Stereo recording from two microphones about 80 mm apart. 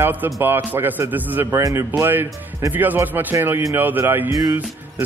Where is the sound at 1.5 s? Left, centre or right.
Right.